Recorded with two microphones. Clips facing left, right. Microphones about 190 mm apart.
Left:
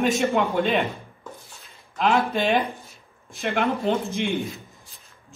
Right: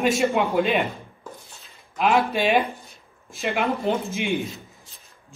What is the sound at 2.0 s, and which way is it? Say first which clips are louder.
A man's voice: right 1 dB; 5° right (ahead or behind).